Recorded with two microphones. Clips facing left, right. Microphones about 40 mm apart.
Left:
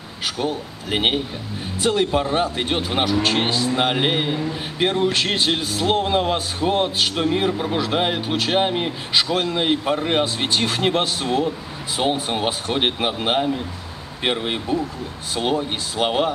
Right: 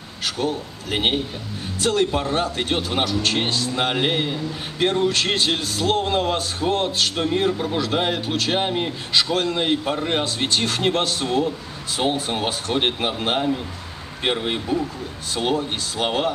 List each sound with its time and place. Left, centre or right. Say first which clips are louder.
0.2 s a man's voice: even; centre